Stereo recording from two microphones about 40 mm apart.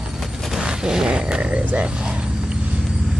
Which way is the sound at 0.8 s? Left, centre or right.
Centre.